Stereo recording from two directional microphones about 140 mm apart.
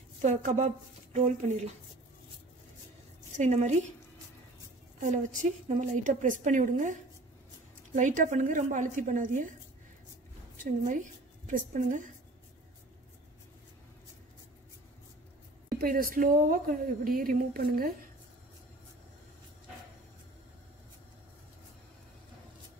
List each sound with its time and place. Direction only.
0.2 s a woman's voice: 60° right (ahead or behind)
3.3 s a woman's voice: 55° right (ahead or behind)
5.0 s a woman's voice: 60° right (ahead or behind)
11.4 s a woman's voice: 65° right (ahead or behind)
15.7 s a woman's voice: 90° right